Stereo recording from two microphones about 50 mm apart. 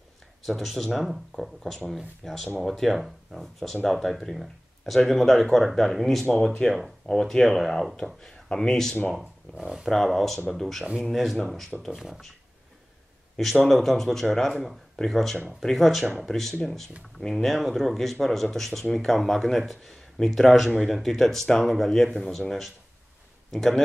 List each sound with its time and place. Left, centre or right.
0.4 s speech: centre
6.6 s speech: centre
8.2 s speech: centre
9.1 s speech: centre
11.9 s speech: centre
13.4 s speech: centre
23.5 s speech: centre